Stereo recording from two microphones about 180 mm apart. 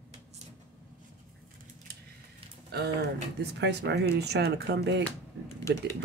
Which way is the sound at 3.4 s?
70° right (ahead or behind).